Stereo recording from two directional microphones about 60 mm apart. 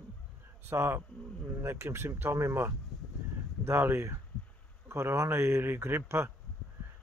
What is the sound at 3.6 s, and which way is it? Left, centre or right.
Speech, right.